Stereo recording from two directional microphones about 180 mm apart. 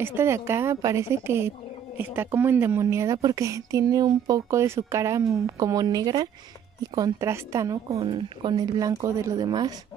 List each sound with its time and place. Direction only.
0.0 s a woman's voice: 15° right (ahead or behind)